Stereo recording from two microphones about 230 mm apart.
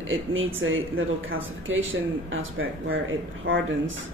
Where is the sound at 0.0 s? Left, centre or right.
Right.